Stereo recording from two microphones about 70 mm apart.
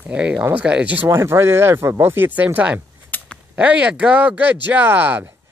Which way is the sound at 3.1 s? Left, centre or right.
Left.